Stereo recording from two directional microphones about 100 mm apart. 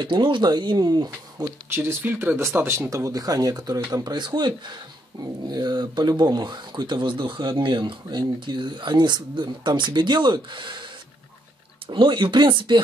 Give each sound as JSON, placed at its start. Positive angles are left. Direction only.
{"t": 0.0, "sound": "speech", "side_deg": -55}
{"t": 1.4, "sound": "speech", "side_deg": -25}
{"t": 11.9, "sound": "speech", "side_deg": -55}